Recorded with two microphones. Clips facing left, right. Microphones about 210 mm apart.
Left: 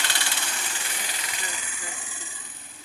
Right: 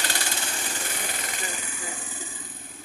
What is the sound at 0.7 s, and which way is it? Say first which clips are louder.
Engine: right 4 dB; 55° right (ahead or behind).